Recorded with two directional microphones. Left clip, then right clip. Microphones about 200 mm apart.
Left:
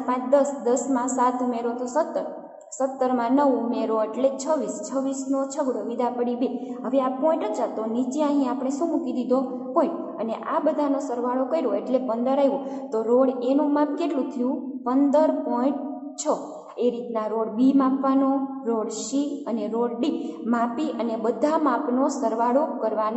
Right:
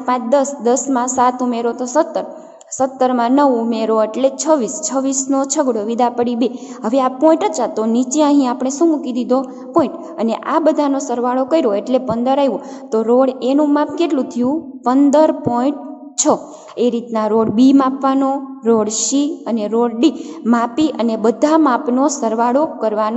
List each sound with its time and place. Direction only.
0.0 s a woman's voice: 45° right (ahead or behind)